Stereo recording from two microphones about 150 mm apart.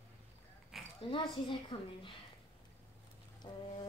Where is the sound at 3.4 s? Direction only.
30° left (ahead or behind).